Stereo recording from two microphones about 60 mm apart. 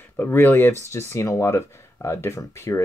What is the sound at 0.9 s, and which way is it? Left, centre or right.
Speech, left.